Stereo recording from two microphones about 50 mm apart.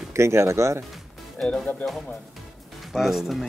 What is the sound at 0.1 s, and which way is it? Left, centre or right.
Speech, right.